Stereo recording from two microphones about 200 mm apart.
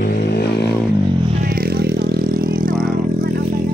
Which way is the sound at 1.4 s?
45° right (ahead or behind).